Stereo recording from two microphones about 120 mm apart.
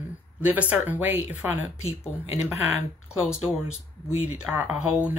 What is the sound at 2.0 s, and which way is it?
Speech, 65° left (ahead or behind).